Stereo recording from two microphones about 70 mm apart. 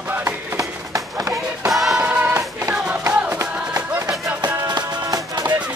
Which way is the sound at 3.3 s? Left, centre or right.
Right.